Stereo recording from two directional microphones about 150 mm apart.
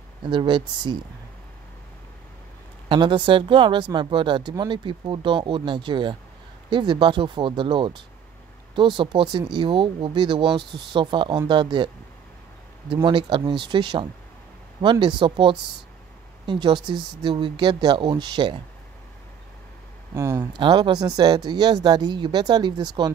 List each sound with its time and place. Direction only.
0.2 s speech: 30° right (ahead or behind)
2.9 s speech: 35° right (ahead or behind)
12.9 s speech: 30° right (ahead or behind)
20.2 s speech: 25° right (ahead or behind)